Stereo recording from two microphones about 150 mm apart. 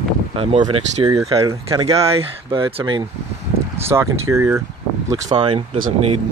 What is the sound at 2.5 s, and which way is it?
Speech, 35° right (ahead or behind).